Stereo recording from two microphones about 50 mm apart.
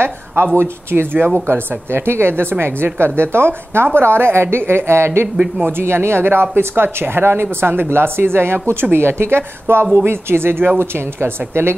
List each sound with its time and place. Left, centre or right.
0.6 s a woman's voice: right